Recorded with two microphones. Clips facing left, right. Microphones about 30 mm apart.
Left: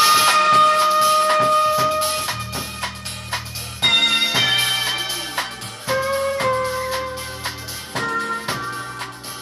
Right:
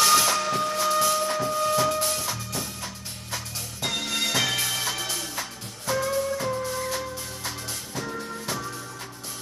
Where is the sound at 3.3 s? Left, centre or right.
Left.